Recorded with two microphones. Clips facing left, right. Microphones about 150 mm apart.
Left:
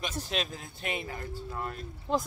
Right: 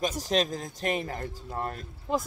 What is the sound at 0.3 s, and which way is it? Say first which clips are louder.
Speech: right 7 dB; 40° right (ahead or behind).